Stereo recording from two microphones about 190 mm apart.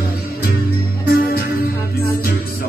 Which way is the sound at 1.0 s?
55° left (ahead or behind).